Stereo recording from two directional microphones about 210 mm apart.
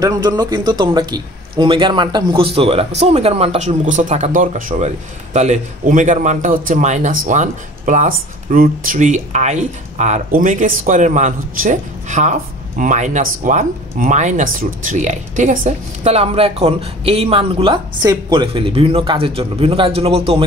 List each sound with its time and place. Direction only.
0.0 s speech: 15° right (ahead or behind)